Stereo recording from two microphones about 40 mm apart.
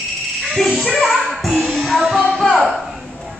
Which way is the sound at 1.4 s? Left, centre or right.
Centre.